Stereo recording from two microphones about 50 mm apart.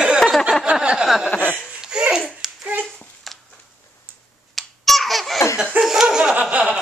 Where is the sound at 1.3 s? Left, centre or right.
Left.